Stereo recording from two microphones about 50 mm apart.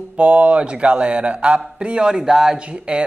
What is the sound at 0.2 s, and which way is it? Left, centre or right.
Speech, right.